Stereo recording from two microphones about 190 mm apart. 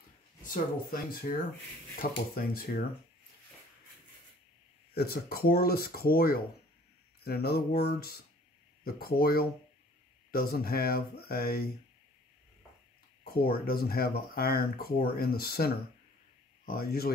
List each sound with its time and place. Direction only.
0.4 s speech: 45° left (ahead or behind)
4.9 s speech: 55° left (ahead or behind)
7.2 s a sound: 55° left (ahead or behind)
8.8 s speech: 55° left (ahead or behind)
13.2 s speech: 55° left (ahead or behind)